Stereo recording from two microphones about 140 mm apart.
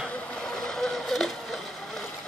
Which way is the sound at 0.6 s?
5° left (ahead or behind).